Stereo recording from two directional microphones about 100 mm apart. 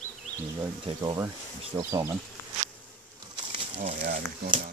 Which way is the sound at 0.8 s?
50° right (ahead or behind).